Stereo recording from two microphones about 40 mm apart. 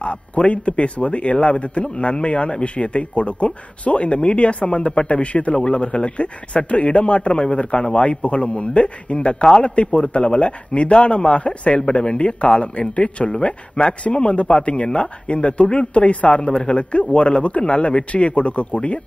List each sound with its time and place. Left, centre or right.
0.0 s speech: left